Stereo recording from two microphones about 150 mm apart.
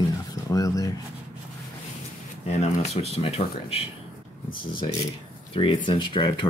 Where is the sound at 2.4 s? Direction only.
45° left (ahead or behind).